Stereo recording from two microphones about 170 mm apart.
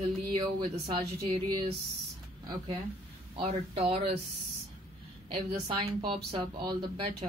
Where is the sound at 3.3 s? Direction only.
35° right (ahead or behind).